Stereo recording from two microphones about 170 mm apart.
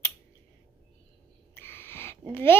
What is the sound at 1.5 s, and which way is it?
Owl, 15° left (ahead or behind).